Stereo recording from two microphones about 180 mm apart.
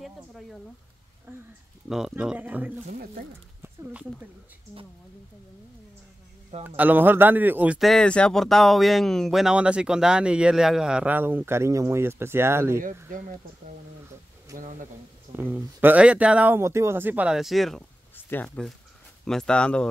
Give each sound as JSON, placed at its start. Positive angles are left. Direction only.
{"t": 0.0, "sound": "speech", "side_deg": 0}
{"t": 1.3, "sound": "speech", "side_deg": -15}
{"t": 1.9, "sound": "speech", "side_deg": 0}
{"t": 2.9, "sound": "speech", "side_deg": -55}
{"t": 6.8, "sound": "a man's voice", "side_deg": -10}
{"t": 15.3, "sound": "a man's voice", "side_deg": -10}